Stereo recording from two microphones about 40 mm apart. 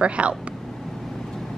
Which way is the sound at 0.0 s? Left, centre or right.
Right.